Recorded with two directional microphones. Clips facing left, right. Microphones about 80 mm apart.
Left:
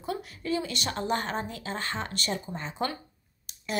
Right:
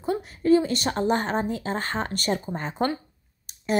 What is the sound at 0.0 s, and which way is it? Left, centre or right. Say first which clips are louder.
A woman's voice: right 8 dB; right.